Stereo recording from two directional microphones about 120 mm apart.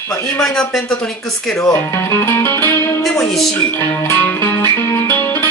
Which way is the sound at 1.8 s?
20° left (ahead or behind).